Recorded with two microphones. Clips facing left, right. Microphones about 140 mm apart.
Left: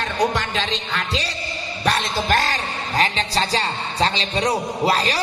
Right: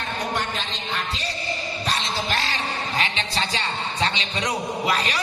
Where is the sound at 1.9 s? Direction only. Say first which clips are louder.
Left 7 dB; 50° left (ahead or behind).